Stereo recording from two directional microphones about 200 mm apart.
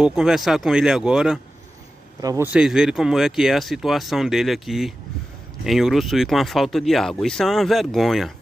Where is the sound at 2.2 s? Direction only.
20° right (ahead or behind).